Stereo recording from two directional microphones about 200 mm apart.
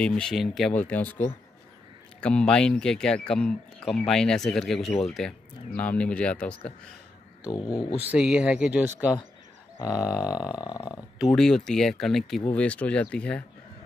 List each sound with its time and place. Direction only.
0.0 s speech: 5° left (ahead or behind)
7.4 s speech: 20° left (ahead or behind)
8.0 s speech: 5° right (ahead or behind)
9.8 s grunt: 15° left (ahead or behind)
11.1 s speech: centre (ahead or behind)